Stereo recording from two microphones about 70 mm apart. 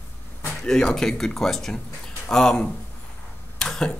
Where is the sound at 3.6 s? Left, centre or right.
Centre.